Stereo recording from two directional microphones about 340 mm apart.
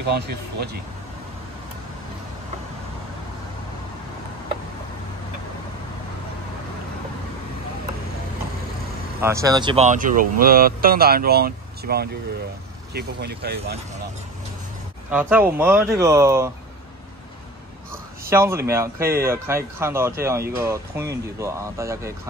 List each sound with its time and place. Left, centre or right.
0.0 s speech: right
9.2 s speech: centre; by 13.7 s right
15.0 s speech: centre
18.3 s speech: centre